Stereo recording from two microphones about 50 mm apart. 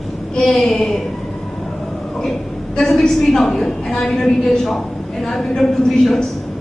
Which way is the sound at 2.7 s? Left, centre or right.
Centre.